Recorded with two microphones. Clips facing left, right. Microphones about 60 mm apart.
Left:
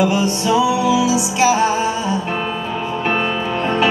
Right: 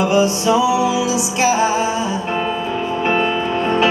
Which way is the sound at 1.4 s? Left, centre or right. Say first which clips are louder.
Left 1 dB; centre.